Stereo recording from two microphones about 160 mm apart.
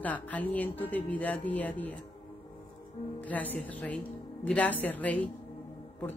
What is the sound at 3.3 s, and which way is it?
A woman's voice, 10° left (ahead or behind).